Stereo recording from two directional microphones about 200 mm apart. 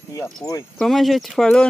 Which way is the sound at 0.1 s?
15° left (ahead or behind).